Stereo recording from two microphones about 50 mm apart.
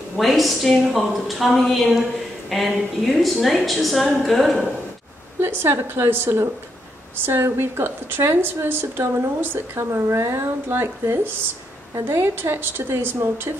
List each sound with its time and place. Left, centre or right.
0.2 s a woman's voice: centre
5.4 s speech: right
9.8 s speech: right